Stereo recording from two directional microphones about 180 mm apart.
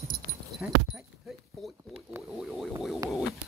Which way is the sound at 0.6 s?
5° right (ahead or behind).